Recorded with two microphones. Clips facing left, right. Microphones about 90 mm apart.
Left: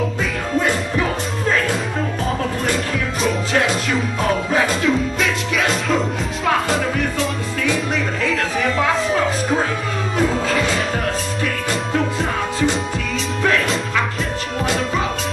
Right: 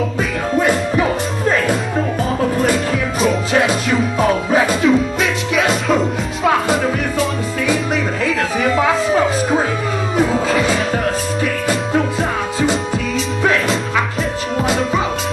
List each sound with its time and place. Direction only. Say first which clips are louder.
3.2 s music: right 3 dB; 5° right (ahead or behind)